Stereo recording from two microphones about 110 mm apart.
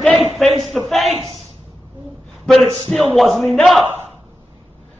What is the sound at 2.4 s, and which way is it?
Speech, centre (ahead or behind).